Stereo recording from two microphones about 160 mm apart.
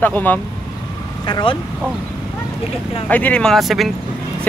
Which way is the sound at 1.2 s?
30° left (ahead or behind).